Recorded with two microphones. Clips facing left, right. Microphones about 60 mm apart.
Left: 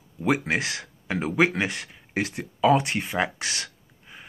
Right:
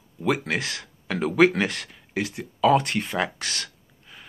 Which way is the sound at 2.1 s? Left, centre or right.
Left.